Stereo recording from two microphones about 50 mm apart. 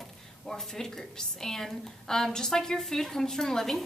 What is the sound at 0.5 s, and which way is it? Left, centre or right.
A woman's voice, centre.